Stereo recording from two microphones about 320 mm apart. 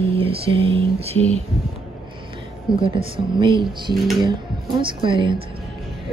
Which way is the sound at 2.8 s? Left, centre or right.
Centre.